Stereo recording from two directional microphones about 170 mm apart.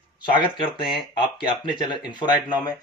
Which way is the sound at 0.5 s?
30° left (ahead or behind).